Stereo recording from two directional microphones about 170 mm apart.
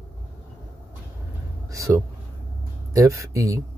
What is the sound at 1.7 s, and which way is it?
Speech, 20° right (ahead or behind).